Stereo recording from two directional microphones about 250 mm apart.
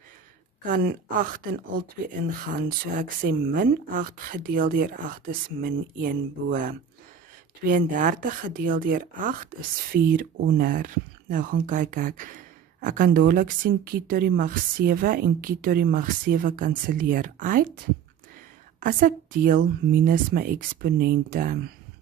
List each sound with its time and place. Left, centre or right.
0.7 s speech: right
18.8 s speech: right